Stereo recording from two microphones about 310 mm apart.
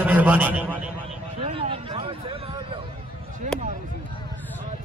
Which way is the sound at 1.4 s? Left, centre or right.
Centre.